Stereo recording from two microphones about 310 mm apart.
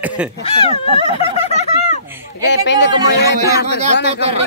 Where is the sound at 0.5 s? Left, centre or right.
Centre.